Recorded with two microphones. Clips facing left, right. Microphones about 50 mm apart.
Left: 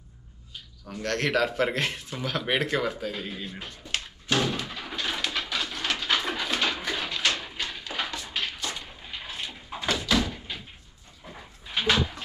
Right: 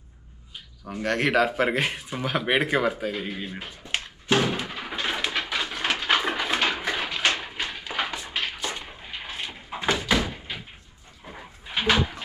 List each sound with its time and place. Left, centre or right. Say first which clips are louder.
0.9 s speech: right 4 dB; centre
3.1 s a sound: right 3 dB; right
11.2 s dog: right 3 dB; centre